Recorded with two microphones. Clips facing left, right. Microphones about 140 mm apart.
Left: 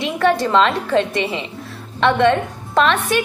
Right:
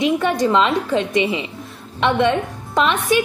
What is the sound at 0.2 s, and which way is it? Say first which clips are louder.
A woman's voice: left 2 dB; 10° right (ahead or behind).